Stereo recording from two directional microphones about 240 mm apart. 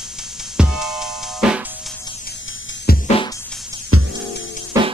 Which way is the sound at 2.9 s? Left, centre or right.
Left.